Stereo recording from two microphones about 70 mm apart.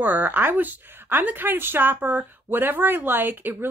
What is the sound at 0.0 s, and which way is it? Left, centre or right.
Speech, right.